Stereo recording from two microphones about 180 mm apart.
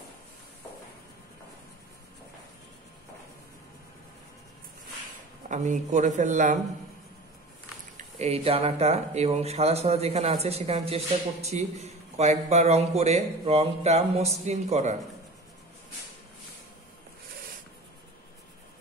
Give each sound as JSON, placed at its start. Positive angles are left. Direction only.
{"t": 5.5, "sound": "a man's voice", "side_deg": -45}
{"t": 8.0, "sound": "speech", "side_deg": -35}